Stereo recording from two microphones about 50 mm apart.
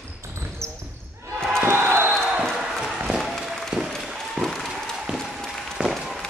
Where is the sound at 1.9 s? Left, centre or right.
Right.